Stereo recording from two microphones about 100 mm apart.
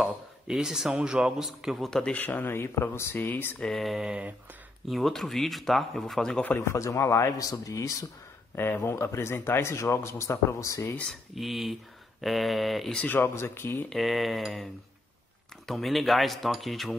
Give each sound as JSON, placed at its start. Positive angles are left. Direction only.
{"t": 0.0, "sound": "a man's voice", "side_deg": -5}
{"t": 1.9, "sound": "speech", "side_deg": 5}
{"t": 2.2, "sound": "speech", "side_deg": 25}
{"t": 3.5, "sound": "speech", "side_deg": 5}
{"t": 6.4, "sound": "speech", "side_deg": 20}
{"t": 6.7, "sound": "speech", "side_deg": 30}
{"t": 8.5, "sound": "speech", "side_deg": 20}
{"t": 11.3, "sound": "speech", "side_deg": 0}
{"t": 13.0, "sound": "speech", "side_deg": 20}
{"t": 13.8, "sound": "speech", "side_deg": 0}